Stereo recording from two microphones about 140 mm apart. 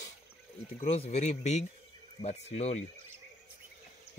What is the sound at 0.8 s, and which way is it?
Speech, 50° left (ahead or behind).